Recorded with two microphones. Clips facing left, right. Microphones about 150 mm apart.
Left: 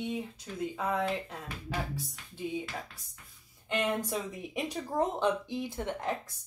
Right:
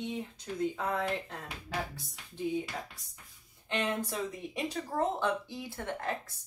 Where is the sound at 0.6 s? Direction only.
5° left (ahead or behind).